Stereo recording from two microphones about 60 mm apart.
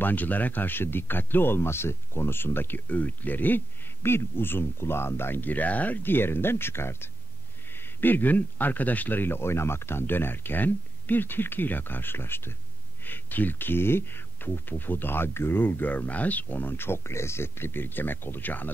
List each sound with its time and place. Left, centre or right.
0.0 s speech: left